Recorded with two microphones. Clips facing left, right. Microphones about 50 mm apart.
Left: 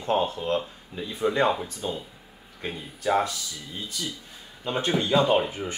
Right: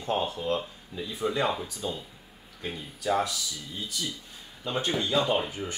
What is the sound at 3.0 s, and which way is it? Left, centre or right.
Speech, left.